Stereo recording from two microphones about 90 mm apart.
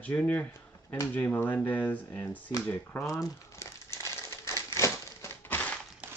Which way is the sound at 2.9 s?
35° left (ahead or behind).